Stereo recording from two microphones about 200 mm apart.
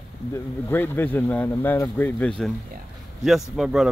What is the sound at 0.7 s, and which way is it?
Speech, 10° left (ahead or behind).